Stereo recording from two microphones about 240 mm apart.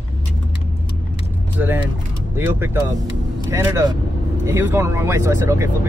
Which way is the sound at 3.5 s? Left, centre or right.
Centre.